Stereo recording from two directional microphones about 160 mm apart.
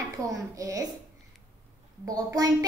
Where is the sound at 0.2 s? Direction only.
20° right (ahead or behind).